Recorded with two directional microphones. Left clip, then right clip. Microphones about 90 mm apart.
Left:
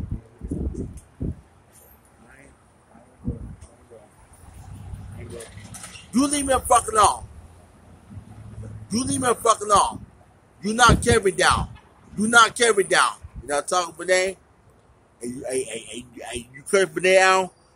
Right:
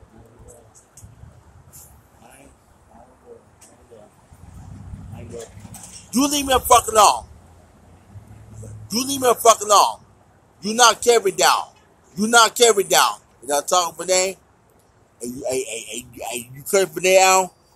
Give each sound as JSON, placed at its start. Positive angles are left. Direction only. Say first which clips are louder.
{"t": 6.1, "sound": "speech", "louder": "right 3 dB", "side_deg": 40}
{"t": 8.8, "sound": "speech", "louder": "right 4 dB", "side_deg": 35}